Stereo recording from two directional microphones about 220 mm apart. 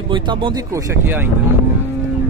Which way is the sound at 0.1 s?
20° right (ahead or behind).